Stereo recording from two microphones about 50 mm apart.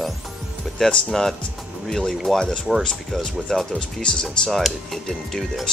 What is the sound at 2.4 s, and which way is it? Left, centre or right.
Speech, centre.